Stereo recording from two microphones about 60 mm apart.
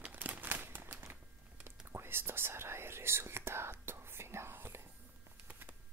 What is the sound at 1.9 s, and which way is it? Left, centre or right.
Whispering, right.